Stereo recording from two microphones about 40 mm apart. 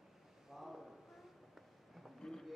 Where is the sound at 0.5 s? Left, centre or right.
Centre.